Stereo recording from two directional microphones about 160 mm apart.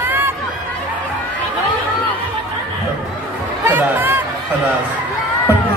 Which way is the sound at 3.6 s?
10° right (ahead or behind).